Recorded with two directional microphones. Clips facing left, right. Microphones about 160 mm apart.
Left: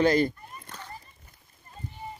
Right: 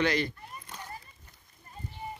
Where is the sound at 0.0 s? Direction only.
45° left (ahead or behind).